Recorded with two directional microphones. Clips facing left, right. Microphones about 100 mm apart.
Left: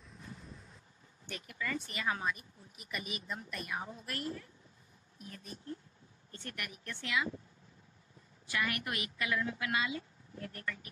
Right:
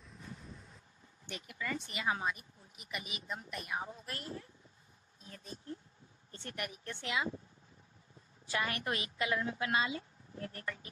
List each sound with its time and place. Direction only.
0.0 s wind noise: centre (ahead or behind)
1.2 s speech: 20° right (ahead or behind)
8.5 s speech: 30° right (ahead or behind)